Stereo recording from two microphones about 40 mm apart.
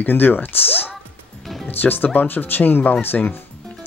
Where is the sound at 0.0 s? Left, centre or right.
Left.